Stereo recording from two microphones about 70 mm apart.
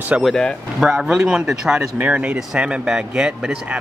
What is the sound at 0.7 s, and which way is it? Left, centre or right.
Speech, centre.